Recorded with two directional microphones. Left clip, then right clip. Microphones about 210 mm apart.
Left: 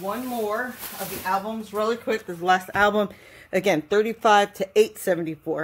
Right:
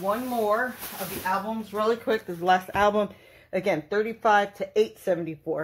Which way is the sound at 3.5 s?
45° left (ahead or behind).